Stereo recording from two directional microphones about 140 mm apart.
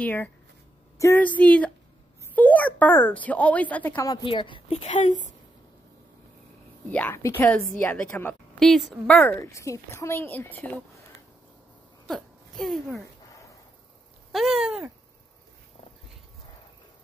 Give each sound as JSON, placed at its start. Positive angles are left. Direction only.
{"t": 0.0, "sound": "speech", "side_deg": 15}
{"t": 4.0, "sound": "a woman's voice", "side_deg": 25}
{"t": 4.3, "sound": "a woman's voice", "side_deg": 40}
{"t": 4.8, "sound": "speech", "side_deg": 60}
{"t": 6.9, "sound": "speech", "side_deg": 10}
{"t": 9.4, "sound": "a woman's voice", "side_deg": 25}
{"t": 12.1, "sound": "a sound", "side_deg": 0}
{"t": 14.3, "sound": "speech", "side_deg": 0}